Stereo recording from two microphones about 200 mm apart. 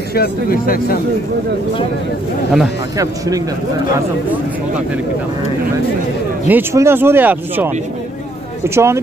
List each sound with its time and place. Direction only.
0.1 s speech: 50° left (ahead or behind)
3.0 s speech: 15° right (ahead or behind)
6.4 s speech: 10° right (ahead or behind)